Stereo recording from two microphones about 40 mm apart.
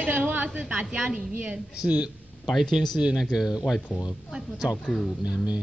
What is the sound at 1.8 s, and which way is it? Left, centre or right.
Speech, centre.